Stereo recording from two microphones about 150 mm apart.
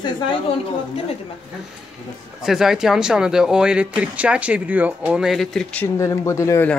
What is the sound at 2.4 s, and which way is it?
Speech, 5° right (ahead or behind).